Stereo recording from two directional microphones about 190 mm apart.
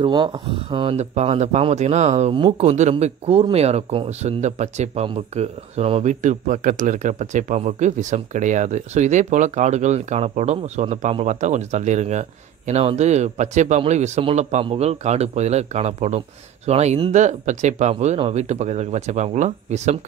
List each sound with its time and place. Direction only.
0.0 s speech: 25° right (ahead or behind)